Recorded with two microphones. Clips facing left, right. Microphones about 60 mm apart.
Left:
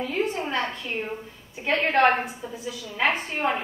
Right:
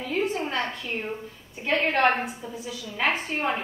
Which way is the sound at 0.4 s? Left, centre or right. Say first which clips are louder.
Left 1 dB; centre.